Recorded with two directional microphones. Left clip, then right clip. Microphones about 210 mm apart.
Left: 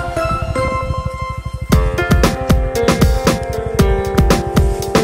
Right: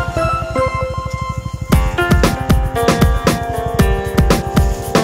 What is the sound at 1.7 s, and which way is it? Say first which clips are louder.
Music: right 1 dB; centre (ahead or behind).